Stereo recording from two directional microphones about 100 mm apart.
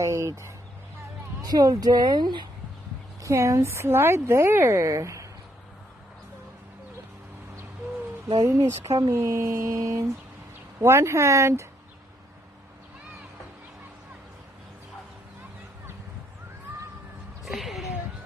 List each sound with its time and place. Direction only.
0.0 s bird: 30° right (ahead or behind)
1.4 s speech: 40° right (ahead or behind)
3.2 s speech: 30° right (ahead or behind)
8.3 s speech: 35° right (ahead or behind)
17.5 s a sound: centre (ahead or behind)